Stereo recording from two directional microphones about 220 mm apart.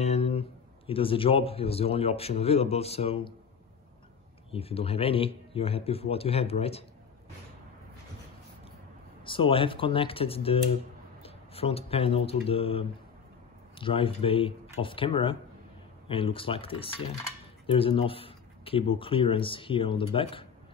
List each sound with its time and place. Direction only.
0.0 s a man's voice: 30° left (ahead or behind)
4.5 s speech: 25° left (ahead or behind)
9.2 s speech: 25° left (ahead or behind)